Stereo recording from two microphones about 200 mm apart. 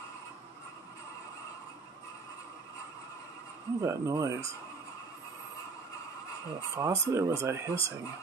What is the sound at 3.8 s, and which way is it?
Speech, 15° right (ahead or behind).